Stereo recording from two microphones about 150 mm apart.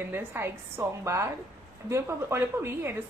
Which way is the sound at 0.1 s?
15° right (ahead or behind).